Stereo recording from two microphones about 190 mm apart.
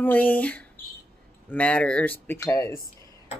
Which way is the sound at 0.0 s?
10° left (ahead or behind).